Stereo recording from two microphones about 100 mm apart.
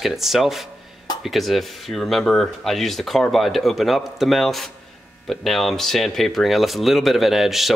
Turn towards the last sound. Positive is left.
turn(degrees=0)  # may be behind; listen again after turning